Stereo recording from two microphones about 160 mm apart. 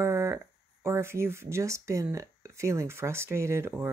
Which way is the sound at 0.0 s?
15° right (ahead or behind).